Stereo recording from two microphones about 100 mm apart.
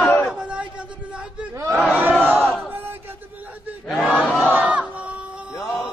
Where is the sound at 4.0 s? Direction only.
10° right (ahead or behind).